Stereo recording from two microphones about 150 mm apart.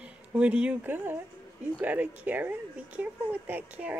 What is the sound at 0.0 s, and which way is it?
Speech, 10° right (ahead or behind).